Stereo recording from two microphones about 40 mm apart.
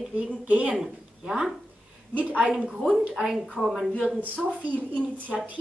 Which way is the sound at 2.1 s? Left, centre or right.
Right.